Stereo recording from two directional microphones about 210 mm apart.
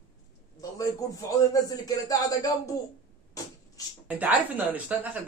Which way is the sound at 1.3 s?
15° left (ahead or behind).